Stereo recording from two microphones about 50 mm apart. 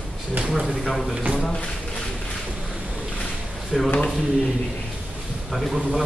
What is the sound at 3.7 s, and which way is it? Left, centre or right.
Speech, centre.